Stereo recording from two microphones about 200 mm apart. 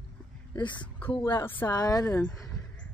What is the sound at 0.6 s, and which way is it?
A woman's voice, 25° left (ahead or behind).